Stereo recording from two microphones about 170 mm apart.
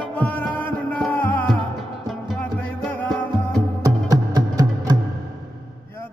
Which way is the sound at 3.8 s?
25° right (ahead or behind).